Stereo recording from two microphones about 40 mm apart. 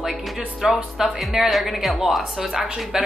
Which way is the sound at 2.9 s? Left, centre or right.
Centre.